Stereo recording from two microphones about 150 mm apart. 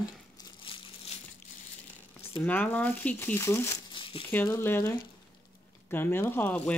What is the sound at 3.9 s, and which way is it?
Crumpling, 35° left (ahead or behind).